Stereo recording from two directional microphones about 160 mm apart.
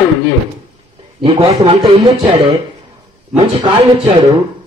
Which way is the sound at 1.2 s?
40° right (ahead or behind).